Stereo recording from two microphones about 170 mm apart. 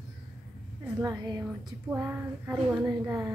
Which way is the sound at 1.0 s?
20° right (ahead or behind).